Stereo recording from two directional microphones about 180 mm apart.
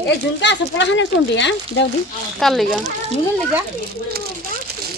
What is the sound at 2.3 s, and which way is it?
Speech, centre (ahead or behind).